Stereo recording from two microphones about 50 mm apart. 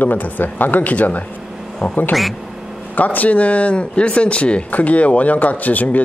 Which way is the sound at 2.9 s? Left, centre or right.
Left.